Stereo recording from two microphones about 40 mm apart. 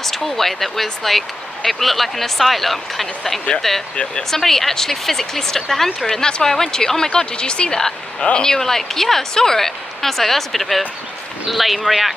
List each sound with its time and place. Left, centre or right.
0.0 s speech: centre
3.9 s speech: left
4.4 s speech: centre